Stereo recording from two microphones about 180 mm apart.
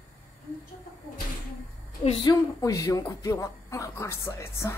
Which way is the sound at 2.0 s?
20° left (ahead or behind).